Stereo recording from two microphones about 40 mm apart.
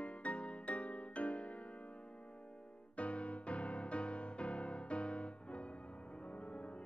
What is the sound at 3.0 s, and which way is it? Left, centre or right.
Music, left.